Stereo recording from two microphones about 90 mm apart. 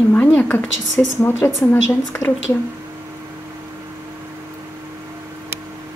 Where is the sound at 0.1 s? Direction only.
20° left (ahead or behind).